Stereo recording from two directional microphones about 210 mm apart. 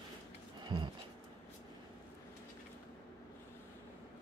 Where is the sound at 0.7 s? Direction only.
20° right (ahead or behind).